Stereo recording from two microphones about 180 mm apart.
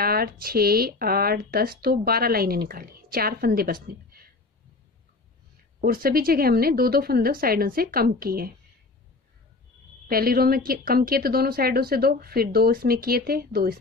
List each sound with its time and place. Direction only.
0.0 s speech: 55° right (ahead or behind)
5.8 s speech: 55° right (ahead or behind)
10.0 s speech: 55° right (ahead or behind)